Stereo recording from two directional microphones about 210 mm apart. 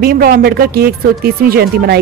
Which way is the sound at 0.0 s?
45° right (ahead or behind).